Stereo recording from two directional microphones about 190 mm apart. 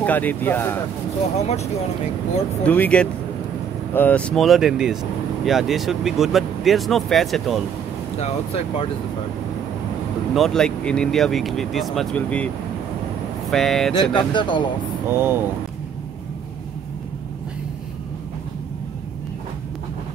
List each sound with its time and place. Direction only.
0.0 s speech: 10° left (ahead or behind)
1.4 s speech: 35° left (ahead or behind)
2.6 s speech: 10° left (ahead or behind)
8.2 s speech: 30° left (ahead or behind)
10.3 s speech: centre (ahead or behind)
13.5 s speech: centre (ahead or behind)
14.1 s speech: 25° left (ahead or behind)
15.0 s speech: 10° right (ahead or behind)